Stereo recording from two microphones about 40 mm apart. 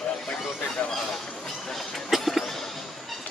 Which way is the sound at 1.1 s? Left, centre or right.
Centre.